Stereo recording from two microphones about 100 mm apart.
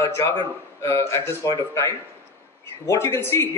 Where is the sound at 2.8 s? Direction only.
25° left (ahead or behind).